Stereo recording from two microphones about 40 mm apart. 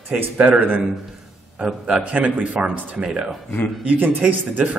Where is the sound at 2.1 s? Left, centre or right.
Right.